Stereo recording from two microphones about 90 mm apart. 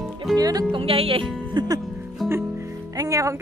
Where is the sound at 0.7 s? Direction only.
90° right.